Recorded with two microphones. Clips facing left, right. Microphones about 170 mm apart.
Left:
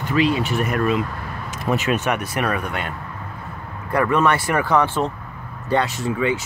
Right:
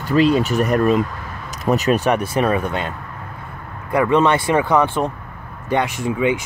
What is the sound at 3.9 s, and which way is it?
Speech, 20° right (ahead or behind).